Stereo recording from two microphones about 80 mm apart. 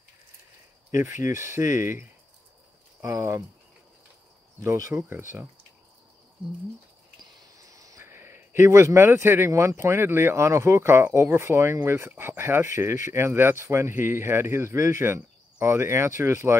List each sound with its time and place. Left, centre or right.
0.9 s a man's voice: right
4.6 s a man's voice: right
5.1 s speech: right
8.0 s a man's voice: right